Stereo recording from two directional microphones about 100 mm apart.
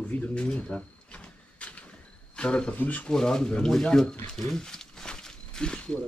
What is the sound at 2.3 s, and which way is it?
A man's voice, 10° left (ahead or behind).